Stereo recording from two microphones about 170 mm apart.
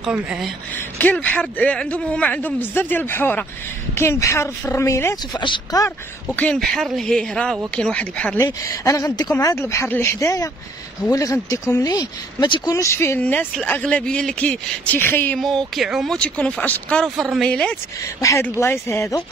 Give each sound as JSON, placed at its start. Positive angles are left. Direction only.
{"t": 0.0, "sound": "speech", "side_deg": -5}
{"t": 0.9, "sound": "speech", "side_deg": 10}
{"t": 6.3, "sound": "speech", "side_deg": 5}
{"t": 8.5, "sound": "speech", "side_deg": 20}
{"t": 15.4, "sound": "speech", "side_deg": 0}
{"t": 18.2, "sound": "speech", "side_deg": 15}